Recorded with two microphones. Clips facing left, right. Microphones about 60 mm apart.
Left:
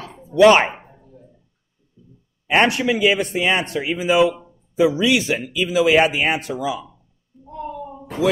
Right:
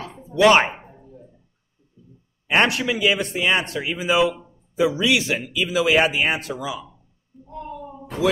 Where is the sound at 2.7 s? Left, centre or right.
Left.